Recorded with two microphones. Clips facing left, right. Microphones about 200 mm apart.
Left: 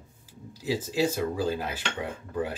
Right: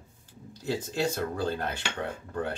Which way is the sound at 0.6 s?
5° left (ahead or behind).